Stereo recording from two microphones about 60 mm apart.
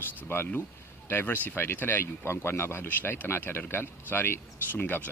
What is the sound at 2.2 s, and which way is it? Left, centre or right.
A man's voice, left.